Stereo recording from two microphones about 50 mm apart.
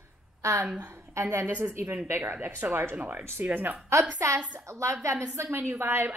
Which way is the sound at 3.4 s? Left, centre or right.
Right.